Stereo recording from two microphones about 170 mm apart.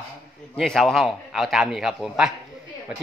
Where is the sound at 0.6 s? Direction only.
Centre (ahead or behind).